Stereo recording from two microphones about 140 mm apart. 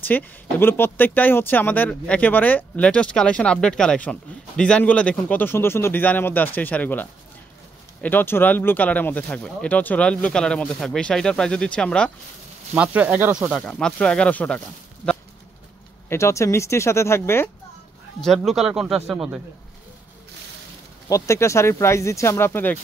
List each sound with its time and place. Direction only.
0.0 s speech: 15° left (ahead or behind)
12.7 s speech: 10° right (ahead or behind)
13.7 s speech: 5° left (ahead or behind)
15.0 s a sound: 5° left (ahead or behind)
16.1 s speech: 20° left (ahead or behind)
18.2 s a man's voice: centre (ahead or behind)
21.1 s speech: 20° left (ahead or behind)